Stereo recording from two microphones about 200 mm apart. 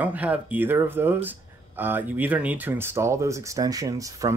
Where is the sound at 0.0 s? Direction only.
10° right (ahead or behind).